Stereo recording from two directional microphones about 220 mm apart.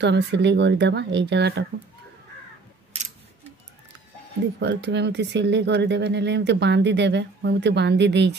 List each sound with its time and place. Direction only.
0.0 s speech: 50° right (ahead or behind)
4.6 s speech: 50° right (ahead or behind)